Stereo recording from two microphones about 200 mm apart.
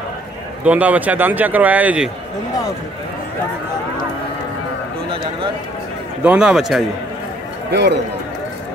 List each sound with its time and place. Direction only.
0.7 s speech: 5° right (ahead or behind)
6.2 s a man's voice: 5° right (ahead or behind)
7.7 s a man's voice: 55° right (ahead or behind)